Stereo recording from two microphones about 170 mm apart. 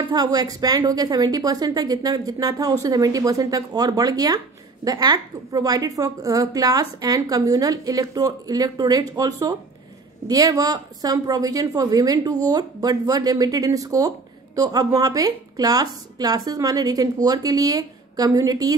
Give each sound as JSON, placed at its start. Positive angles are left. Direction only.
{"t": 0.0, "sound": "a woman's voice", "side_deg": -25}